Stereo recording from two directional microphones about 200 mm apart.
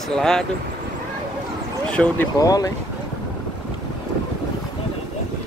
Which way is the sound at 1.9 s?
5° left (ahead or behind).